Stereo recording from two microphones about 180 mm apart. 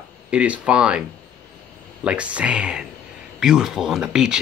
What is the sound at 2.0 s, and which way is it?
Speech, 5° right (ahead or behind).